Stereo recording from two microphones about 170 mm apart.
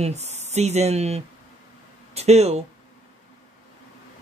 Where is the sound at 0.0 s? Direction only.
40° right (ahead or behind).